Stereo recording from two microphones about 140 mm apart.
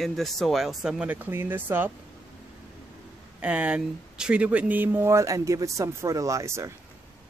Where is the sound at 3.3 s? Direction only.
10° right (ahead or behind).